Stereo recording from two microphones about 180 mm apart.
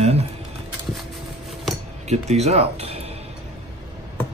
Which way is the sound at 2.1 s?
35° right (ahead or behind).